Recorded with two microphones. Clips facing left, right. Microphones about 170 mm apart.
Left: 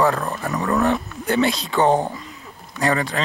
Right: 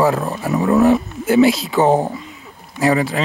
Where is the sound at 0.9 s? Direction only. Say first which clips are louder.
Right 7 dB; 5° right (ahead or behind).